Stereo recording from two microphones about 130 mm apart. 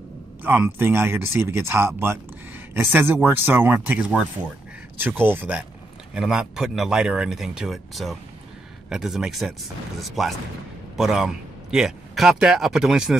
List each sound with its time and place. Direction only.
0.4 s speech: 15° right (ahead or behind)
6.1 s speech: 5° right (ahead or behind)